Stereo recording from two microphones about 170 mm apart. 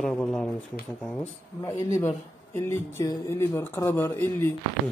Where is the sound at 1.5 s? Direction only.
20° left (ahead or behind).